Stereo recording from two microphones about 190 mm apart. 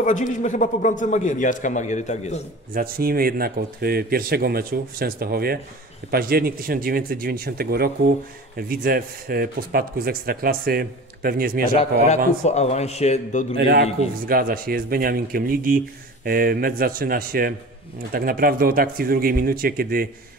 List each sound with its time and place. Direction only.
0.0 s a man's voice: 40° left (ahead or behind)
2.7 s speech: 50° right (ahead or behind)
12.4 s a man's voice: 35° left (ahead or behind)
13.6 s a man's voice: 60° right (ahead or behind)